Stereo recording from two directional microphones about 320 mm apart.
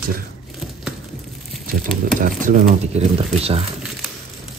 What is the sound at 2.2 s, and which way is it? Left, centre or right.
Speech, right.